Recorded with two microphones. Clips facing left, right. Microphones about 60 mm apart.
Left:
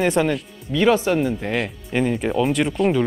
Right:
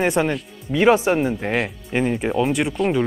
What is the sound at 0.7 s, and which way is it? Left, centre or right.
Speech, right.